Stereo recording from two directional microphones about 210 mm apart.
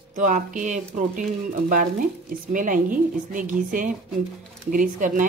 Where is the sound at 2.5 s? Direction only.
40° right (ahead or behind).